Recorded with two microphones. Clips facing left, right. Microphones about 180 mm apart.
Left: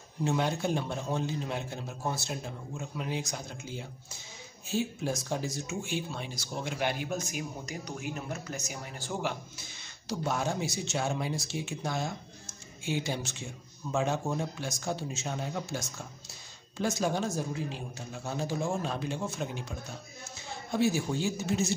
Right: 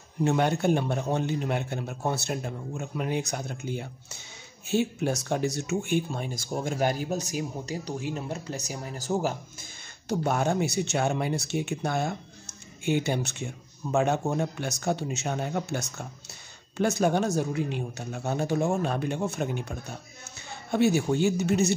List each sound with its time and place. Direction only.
0.2 s a man's voice: 60° right (ahead or behind); by 9.7 s 40° right (ahead or behind)
10.0 s a man's voice: 60° right (ahead or behind)